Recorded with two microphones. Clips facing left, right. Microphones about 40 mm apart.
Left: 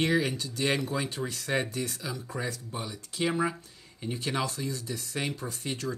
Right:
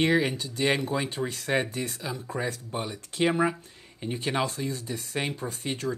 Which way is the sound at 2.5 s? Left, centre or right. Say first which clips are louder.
Right 4 dB; right.